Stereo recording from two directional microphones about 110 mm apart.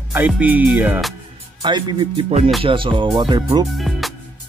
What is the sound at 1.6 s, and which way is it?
Speech, 45° right (ahead or behind).